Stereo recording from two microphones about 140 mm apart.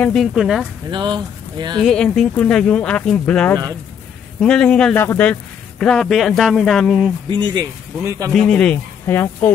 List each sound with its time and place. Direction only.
0.0 s speech: centre (ahead or behind)
0.8 s speech: 30° right (ahead or behind)
1.8 s speech: 5° left (ahead or behind)
7.2 s speech: 35° right (ahead or behind)
8.0 s a man's voice: 20° right (ahead or behind)
8.3 s speech: 5° left (ahead or behind)
9.0 s speech: 15° left (ahead or behind)